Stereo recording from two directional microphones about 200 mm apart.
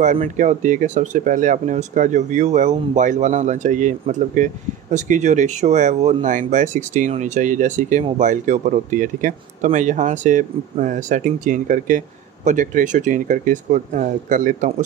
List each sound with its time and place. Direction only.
0.0 s speech: 40° right (ahead or behind)